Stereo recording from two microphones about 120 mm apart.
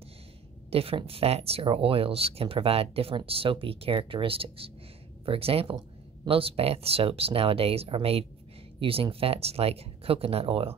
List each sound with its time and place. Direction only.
0.7 s speech: 55° right (ahead or behind)